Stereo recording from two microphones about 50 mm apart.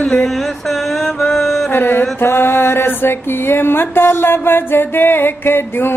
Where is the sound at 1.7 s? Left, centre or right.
Left.